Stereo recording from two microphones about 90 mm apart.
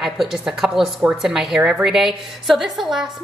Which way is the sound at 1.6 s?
15° right (ahead or behind).